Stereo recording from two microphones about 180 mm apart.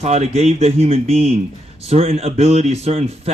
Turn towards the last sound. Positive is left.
turn(degrees=-35)  # may be behind; listen again after turning